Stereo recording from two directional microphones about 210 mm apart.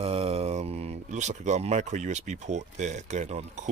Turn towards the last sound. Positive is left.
turn(degrees=-35)  # may be behind; listen again after turning